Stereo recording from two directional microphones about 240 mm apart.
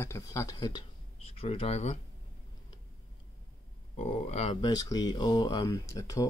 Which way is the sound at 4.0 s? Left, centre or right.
Left.